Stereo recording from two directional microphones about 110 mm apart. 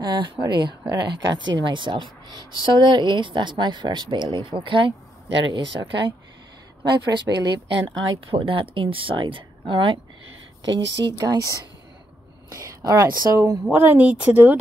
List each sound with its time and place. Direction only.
0.0 s speech: 45° right (ahead or behind)
8.3 s speech: 55° right (ahead or behind)
10.6 s speech: 40° right (ahead or behind)
13.7 s speech: 15° right (ahead or behind)